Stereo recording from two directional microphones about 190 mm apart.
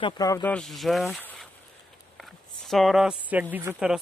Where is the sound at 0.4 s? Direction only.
5° left (ahead or behind).